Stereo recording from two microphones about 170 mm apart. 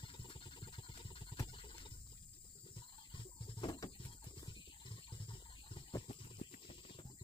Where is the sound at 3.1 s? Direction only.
25° left (ahead or behind).